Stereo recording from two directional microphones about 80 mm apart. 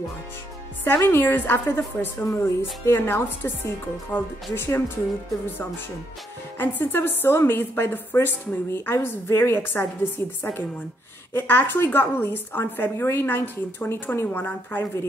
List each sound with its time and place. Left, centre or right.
0.8 s a woman's voice: left
6.6 s a woman's voice: left